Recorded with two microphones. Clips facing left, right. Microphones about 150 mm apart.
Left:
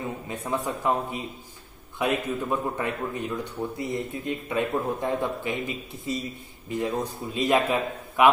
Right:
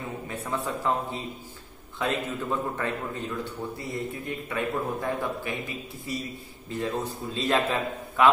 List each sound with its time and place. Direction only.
0.3 s a man's voice: 15° left (ahead or behind)